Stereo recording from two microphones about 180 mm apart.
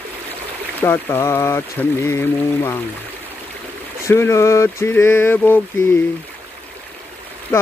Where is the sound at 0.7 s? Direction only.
10° left (ahead or behind).